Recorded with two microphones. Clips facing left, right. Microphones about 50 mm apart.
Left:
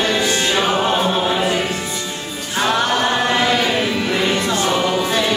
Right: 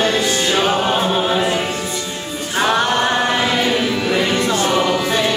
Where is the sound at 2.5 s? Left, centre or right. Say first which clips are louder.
Right 1 dB; centre.